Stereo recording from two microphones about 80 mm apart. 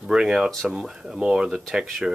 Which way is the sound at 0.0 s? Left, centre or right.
Centre.